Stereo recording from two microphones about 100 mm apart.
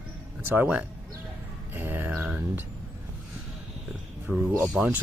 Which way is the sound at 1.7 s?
20° right (ahead or behind).